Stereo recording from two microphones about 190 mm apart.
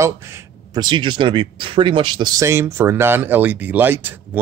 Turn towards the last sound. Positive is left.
turn(degrees=-10)  # may be behind; listen again after turning